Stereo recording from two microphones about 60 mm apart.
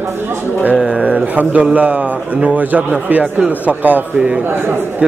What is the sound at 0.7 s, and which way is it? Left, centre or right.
Speech, centre.